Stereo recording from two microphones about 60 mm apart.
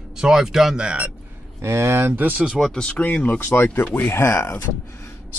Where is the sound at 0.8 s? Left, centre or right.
Right.